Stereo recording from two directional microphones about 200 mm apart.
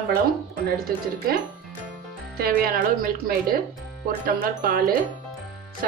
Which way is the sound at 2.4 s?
50° right (ahead or behind).